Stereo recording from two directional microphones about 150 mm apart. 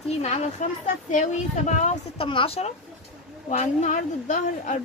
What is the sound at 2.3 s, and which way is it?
A woman's voice, 40° left (ahead or behind).